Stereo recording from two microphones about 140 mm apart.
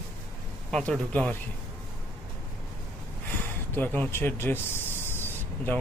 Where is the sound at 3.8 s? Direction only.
15° left (ahead or behind).